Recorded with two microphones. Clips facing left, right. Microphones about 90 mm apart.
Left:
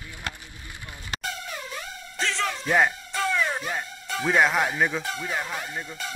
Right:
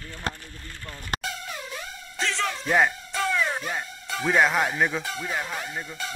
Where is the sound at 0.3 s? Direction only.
35° right (ahead or behind).